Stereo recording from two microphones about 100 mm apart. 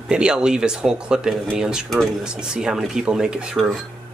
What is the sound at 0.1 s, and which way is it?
Speech, 10° right (ahead or behind).